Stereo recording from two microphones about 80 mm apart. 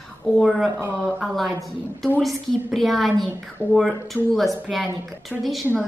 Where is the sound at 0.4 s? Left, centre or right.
Centre.